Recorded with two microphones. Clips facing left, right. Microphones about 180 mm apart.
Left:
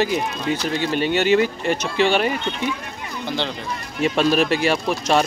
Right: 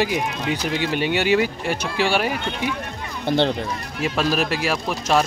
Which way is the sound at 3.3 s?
55° right (ahead or behind).